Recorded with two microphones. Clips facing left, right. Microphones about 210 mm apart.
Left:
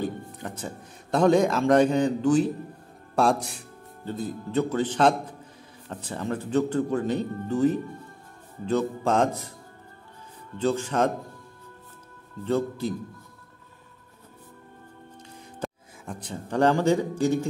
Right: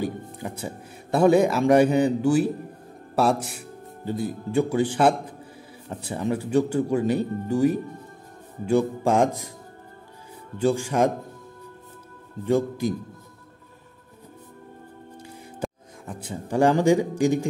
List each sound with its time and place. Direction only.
0.0 s speech: 10° right (ahead or behind)
10.6 s speech: 10° right (ahead or behind)
12.4 s speech: 15° right (ahead or behind)
15.6 s a man's voice: 5° right (ahead or behind)